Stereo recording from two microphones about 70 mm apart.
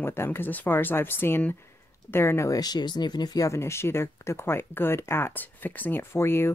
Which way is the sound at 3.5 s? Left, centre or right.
Left.